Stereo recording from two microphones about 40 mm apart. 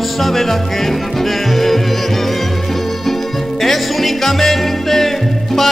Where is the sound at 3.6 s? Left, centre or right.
Centre.